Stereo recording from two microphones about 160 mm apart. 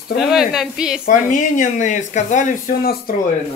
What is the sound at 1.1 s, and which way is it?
Speech, 55° left (ahead or behind).